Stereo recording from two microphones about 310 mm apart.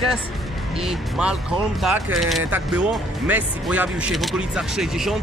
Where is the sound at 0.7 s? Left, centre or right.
Centre.